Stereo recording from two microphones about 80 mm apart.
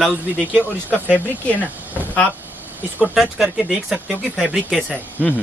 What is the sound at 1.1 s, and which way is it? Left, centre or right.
Speech, centre.